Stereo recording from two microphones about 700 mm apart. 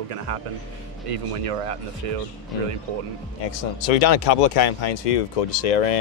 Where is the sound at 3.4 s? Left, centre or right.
Left.